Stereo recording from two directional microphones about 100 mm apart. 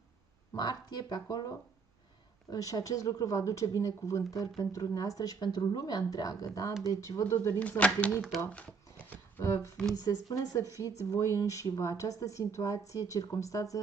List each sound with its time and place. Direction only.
0.6 s speech: 45° left (ahead or behind)
7.5 s speech: 15° left (ahead or behind)
8.5 s shuffling cards: 15° left (ahead or behind)
9.4 s speech: 30° left (ahead or behind)